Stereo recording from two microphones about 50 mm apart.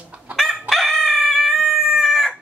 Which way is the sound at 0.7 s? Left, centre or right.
Centre.